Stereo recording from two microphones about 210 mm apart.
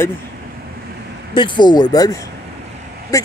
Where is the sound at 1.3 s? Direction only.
20° left (ahead or behind).